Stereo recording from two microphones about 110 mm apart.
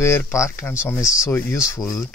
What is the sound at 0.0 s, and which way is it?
Speech, 25° left (ahead or behind).